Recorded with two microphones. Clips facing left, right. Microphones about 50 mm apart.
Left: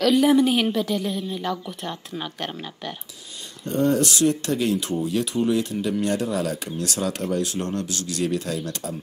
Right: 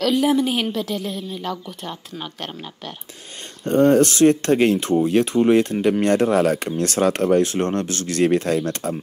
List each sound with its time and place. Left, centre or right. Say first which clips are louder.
0.0 s a woman's voice: left 1 dB; centre
3.6 s speech: right 6 dB; right